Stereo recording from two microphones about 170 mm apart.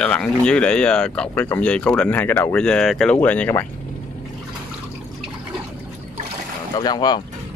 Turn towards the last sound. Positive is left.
turn(degrees=25)  # may be behind; listen again after turning